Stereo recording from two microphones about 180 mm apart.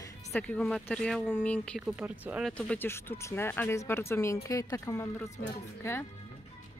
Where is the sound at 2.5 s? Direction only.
5° left (ahead or behind).